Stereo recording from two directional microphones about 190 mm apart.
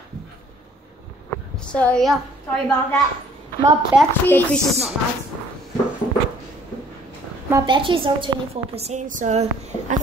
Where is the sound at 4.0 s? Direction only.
10° left (ahead or behind).